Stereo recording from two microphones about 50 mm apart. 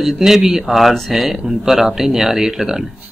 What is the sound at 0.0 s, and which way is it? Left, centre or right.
Speech, centre.